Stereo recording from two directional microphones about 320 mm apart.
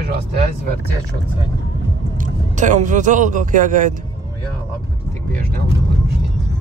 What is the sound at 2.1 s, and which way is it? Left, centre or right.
Speech, right.